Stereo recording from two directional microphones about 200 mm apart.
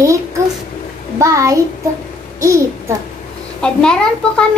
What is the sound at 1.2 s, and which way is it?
A child's voice, 15° right (ahead or behind).